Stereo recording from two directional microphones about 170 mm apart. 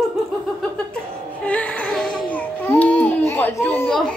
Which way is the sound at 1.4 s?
5° left (ahead or behind).